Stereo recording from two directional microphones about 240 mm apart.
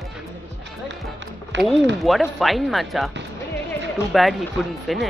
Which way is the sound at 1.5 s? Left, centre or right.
Right.